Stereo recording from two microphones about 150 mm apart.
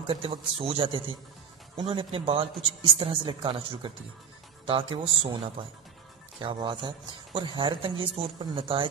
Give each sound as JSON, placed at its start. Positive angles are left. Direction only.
{"t": 0.0, "sound": "a man's voice", "side_deg": -35}